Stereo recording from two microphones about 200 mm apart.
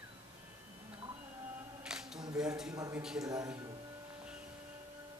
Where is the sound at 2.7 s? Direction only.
15° right (ahead or behind).